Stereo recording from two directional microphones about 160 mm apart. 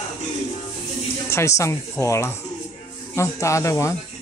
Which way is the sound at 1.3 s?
20° left (ahead or behind).